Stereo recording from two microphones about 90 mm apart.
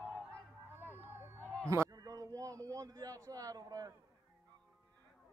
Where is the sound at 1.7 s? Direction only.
40° right (ahead or behind).